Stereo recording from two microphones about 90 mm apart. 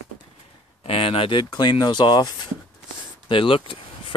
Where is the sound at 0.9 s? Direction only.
90° left; by 2.3 s 50° left (ahead or behind).